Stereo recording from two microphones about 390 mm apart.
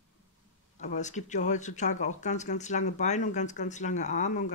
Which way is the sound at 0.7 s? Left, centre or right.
Centre.